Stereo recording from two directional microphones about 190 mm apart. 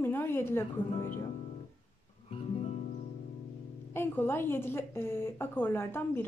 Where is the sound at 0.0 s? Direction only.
10° left (ahead or behind).